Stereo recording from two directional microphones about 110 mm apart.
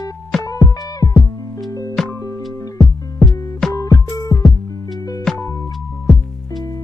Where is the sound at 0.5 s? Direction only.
30° left (ahead or behind).